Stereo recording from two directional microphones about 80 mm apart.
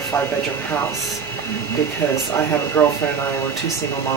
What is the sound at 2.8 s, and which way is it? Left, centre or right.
Speech, centre.